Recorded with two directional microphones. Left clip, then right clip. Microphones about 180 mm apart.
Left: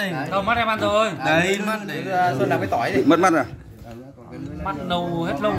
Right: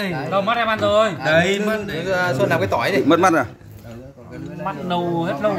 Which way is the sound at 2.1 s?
70° right (ahead or behind).